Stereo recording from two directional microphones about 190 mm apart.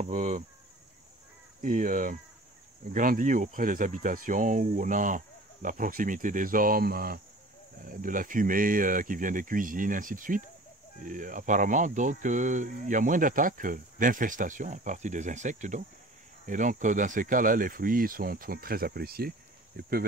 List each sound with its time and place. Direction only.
0.0 s insect: 40° right (ahead or behind)
1.6 s speech: 45° right (ahead or behind)